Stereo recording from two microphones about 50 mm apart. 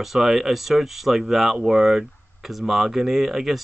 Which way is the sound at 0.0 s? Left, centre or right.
Centre.